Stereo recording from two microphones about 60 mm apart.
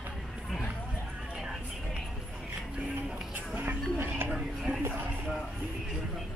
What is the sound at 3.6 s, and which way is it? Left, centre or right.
Music, right.